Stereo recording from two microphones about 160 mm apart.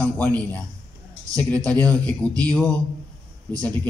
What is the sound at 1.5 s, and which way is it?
Speech, 10° left (ahead or behind).